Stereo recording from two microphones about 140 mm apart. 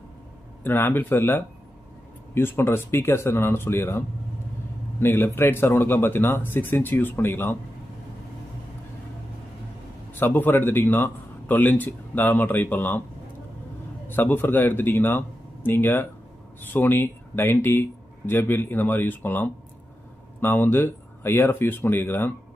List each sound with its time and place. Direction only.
0.7 s speech: 15° left (ahead or behind)
5.0 s speech: 15° left (ahead or behind)
10.1 s speech: 15° left (ahead or behind)
14.0 s a man's voice: 15° left (ahead or behind)